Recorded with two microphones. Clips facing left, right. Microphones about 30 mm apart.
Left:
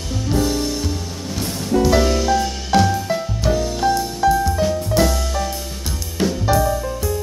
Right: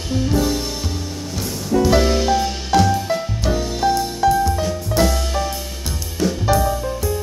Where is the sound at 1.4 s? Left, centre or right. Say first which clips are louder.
Left 1 dB; centre.